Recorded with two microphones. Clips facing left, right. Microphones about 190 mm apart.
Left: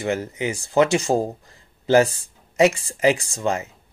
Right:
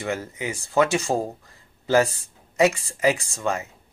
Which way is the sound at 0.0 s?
25° left (ahead or behind).